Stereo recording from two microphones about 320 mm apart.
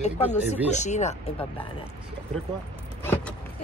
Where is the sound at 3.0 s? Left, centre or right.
Centre.